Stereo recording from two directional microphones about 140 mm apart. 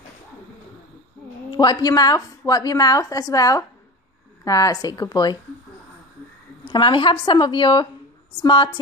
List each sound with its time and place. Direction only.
1.5 s a woman's voice: 30° left (ahead or behind)
6.6 s a woman's voice: 35° left (ahead or behind)